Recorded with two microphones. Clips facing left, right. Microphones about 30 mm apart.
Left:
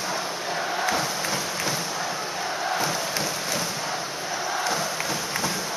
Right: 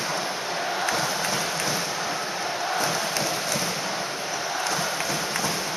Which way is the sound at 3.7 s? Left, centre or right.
Centre.